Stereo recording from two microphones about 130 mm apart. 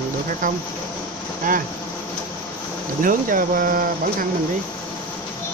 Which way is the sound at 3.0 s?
90° right.